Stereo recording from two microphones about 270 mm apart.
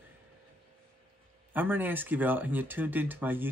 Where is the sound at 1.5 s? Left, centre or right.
Centre.